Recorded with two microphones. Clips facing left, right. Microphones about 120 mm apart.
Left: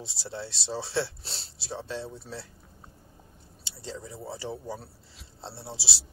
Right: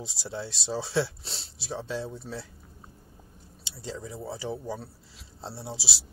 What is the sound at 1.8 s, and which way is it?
Speech, 5° right (ahead or behind).